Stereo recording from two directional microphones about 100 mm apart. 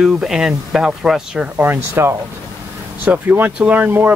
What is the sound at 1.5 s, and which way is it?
Speech, 20° right (ahead or behind).